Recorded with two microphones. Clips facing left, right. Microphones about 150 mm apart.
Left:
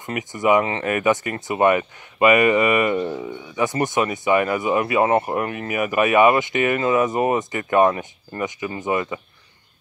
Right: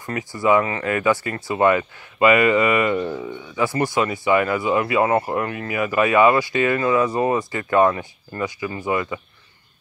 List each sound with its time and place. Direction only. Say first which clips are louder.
0.0 s speech: even; 20° left (ahead or behind)